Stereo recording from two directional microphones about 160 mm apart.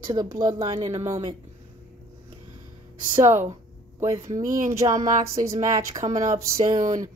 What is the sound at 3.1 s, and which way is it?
Speech, 45° right (ahead or behind).